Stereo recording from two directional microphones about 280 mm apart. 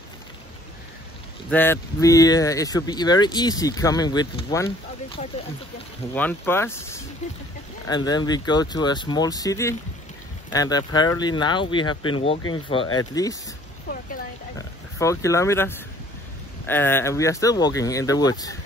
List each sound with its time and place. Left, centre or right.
1.5 s speech: centre
15.0 s speech: centre